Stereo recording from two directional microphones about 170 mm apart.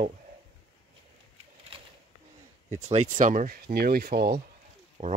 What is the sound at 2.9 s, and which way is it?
Speech, 45° right (ahead or behind).